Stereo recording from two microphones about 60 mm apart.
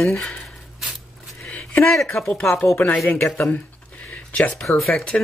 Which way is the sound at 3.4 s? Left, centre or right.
Left.